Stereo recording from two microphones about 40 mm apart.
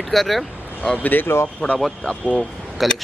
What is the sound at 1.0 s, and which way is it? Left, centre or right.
Speech, left.